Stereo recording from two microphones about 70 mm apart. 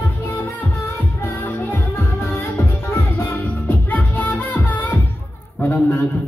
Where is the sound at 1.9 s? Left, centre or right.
Left.